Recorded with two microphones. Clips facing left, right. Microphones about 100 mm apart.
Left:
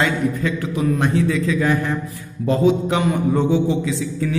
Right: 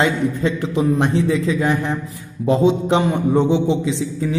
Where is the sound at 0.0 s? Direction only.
25° right (ahead or behind).